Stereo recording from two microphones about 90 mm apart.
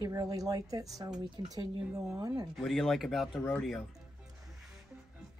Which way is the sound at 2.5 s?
5° left (ahead or behind).